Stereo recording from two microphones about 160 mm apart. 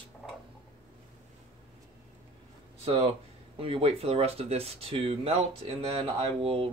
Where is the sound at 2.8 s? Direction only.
35° right (ahead or behind).